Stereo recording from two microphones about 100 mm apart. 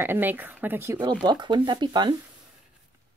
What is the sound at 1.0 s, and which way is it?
Speech, 45° right (ahead or behind).